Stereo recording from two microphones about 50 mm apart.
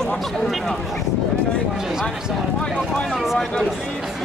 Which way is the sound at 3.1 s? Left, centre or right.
Centre.